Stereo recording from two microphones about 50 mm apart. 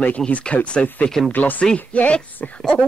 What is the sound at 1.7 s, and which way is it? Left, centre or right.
Speech, left.